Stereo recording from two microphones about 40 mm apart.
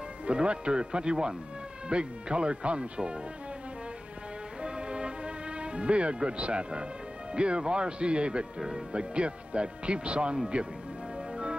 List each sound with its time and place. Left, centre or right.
0.3 s speech: right
4.6 s music: right
6.1 s speech: right
8.5 s speech: centre
8.9 s speech: right